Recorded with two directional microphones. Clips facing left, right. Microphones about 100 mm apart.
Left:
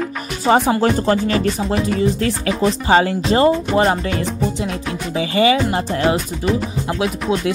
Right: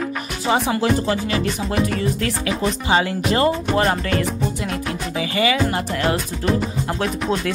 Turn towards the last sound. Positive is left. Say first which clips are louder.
# left 2 dB
turn(degrees=5)  # may be behind; listen again after turning